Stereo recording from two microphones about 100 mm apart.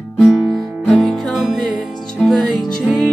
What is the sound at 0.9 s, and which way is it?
Music, 5° left (ahead or behind).